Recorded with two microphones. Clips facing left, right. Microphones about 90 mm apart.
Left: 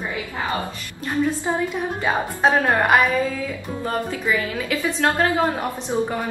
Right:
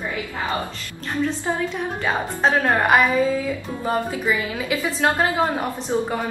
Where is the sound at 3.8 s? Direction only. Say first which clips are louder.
Right 2 dB; 15° right (ahead or behind).